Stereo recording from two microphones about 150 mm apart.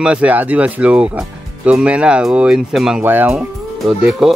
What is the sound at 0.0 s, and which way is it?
Speech, 10° right (ahead or behind).